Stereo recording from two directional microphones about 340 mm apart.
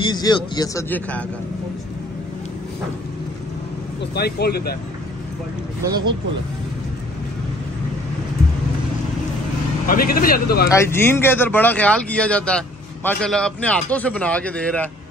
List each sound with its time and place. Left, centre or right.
0.0 s a man's voice: centre
4.0 s speech: left
9.8 s speech: left
10.7 s speech: centre